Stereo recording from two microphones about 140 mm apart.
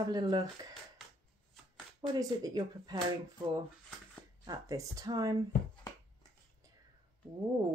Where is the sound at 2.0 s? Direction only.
25° right (ahead or behind).